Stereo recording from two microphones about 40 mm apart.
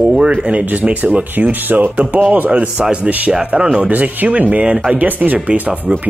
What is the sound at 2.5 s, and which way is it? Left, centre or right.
Speech, right.